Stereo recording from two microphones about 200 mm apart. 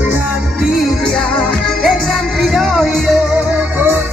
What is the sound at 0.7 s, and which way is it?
Music, centre (ahead or behind).